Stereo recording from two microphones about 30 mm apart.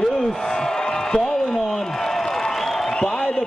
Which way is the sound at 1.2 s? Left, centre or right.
Centre.